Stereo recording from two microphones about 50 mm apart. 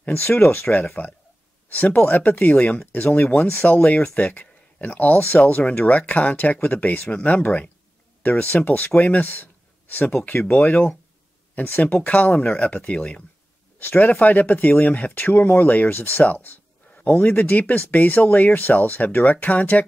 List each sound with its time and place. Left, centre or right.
0.1 s speech: left
13.7 s speech: left